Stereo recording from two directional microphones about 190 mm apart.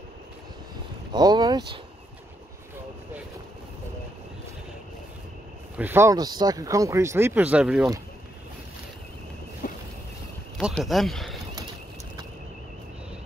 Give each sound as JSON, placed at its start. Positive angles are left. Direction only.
{"t": 1.1, "sound": "speech", "side_deg": -20}
{"t": 5.8, "sound": "speech", "side_deg": -10}
{"t": 9.6, "sound": "vehicle", "side_deg": 45}
{"t": 10.7, "sound": "speech", "side_deg": 0}